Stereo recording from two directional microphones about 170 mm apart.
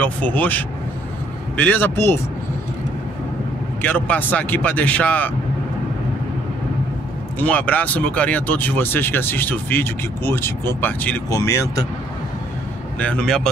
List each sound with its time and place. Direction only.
0.0 s speech: 10° left (ahead or behind)
3.8 s speech: 10° left (ahead or behind)
7.3 s speech: 10° left (ahead or behind)
13.0 s speech: 5° left (ahead or behind)